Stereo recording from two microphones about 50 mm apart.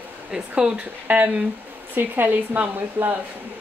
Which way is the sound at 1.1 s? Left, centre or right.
Right.